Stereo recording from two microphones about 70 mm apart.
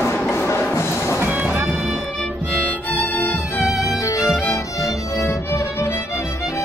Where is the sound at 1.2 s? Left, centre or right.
Right.